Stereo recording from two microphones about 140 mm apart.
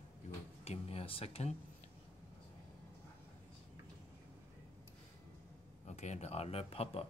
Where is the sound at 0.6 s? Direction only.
45° left (ahead or behind).